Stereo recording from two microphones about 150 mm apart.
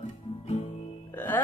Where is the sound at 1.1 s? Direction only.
10° left (ahead or behind).